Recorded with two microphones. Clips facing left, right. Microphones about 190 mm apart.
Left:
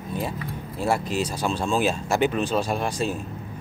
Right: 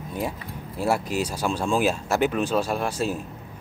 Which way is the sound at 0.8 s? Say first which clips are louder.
Even; 10° right (ahead or behind).